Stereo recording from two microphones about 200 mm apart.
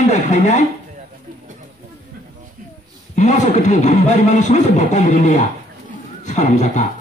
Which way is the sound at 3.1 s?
35° left (ahead or behind).